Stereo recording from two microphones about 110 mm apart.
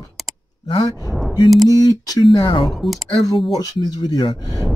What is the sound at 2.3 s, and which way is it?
Speech, 45° left (ahead or behind).